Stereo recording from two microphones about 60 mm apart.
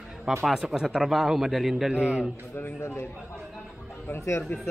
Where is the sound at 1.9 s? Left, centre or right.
Centre.